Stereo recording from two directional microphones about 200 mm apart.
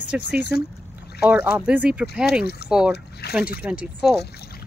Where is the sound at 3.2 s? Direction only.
50° left (ahead or behind).